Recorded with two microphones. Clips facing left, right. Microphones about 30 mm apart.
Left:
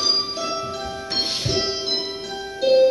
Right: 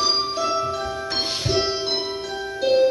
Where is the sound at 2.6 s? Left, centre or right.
Left.